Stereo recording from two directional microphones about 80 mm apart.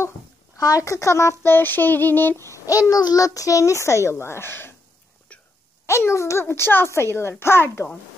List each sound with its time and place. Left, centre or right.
0.6 s speech: left
5.3 s wail: centre
5.9 s speech: left